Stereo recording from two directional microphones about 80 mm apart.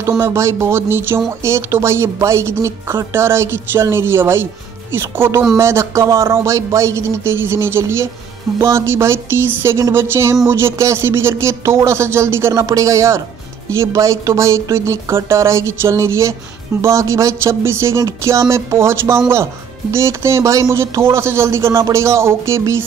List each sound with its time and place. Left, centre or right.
0.2 s speech: right